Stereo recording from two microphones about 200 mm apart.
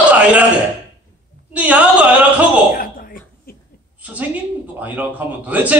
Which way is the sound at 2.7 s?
45° left (ahead or behind).